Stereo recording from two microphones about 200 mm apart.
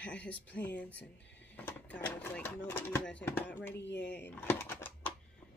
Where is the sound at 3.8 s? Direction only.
60° left (ahead or behind).